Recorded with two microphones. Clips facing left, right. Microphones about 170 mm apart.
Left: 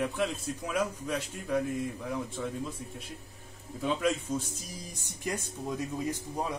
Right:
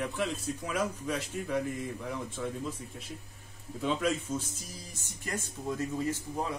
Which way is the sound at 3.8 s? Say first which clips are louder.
Left 1 dB; centre (ahead or behind).